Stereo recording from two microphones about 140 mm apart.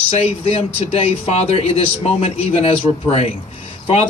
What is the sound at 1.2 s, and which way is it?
Speech, 45° left (ahead or behind).